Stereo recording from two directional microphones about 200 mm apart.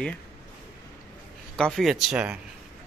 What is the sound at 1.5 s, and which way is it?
Speech, centre (ahead or behind).